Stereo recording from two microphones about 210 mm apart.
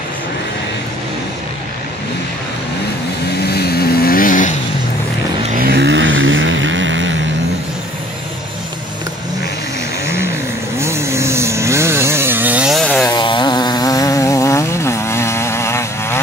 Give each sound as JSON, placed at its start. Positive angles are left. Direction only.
{"t": 3.4, "sound": "vehicle", "side_deg": 50}
{"t": 5.5, "sound": "vehicle", "side_deg": -45}
{"t": 10.0, "sound": "vehicle", "side_deg": -10}
{"t": 10.8, "sound": "chainsaw", "side_deg": -15}
{"t": 13.1, "sound": "chainsaw", "side_deg": 20}